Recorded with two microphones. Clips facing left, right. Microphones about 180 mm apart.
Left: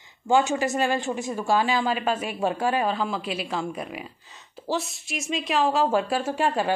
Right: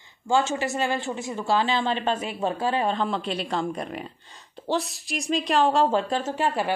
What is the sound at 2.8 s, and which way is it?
Speech, 5° left (ahead or behind).